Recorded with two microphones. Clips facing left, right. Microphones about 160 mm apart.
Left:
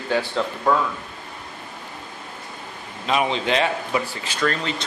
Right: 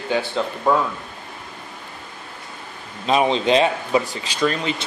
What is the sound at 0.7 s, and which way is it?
Speech, 20° right (ahead or behind).